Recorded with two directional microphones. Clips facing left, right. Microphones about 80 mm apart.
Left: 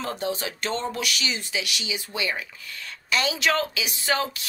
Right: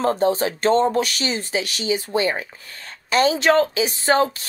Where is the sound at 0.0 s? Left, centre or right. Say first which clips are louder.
Right 10 dB; right.